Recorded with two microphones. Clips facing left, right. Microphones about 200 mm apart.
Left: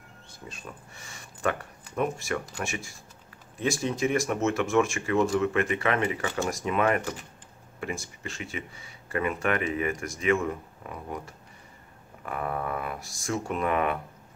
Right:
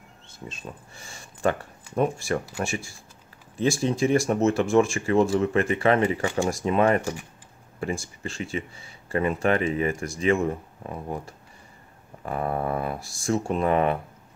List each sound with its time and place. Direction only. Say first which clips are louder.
0.5 s speech: right 3 dB; 25° right (ahead or behind)